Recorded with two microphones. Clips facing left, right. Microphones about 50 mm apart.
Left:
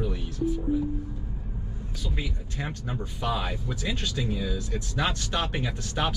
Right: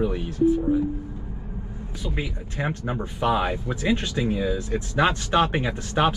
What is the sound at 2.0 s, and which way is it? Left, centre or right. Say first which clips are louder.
Speech: right 5 dB; right.